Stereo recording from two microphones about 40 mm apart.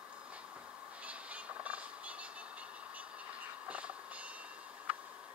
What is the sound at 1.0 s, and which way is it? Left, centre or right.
Vehicle, right.